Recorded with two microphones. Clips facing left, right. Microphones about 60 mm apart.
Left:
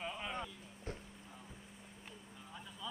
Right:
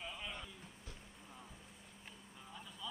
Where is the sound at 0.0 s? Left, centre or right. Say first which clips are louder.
Left 4 dB; centre.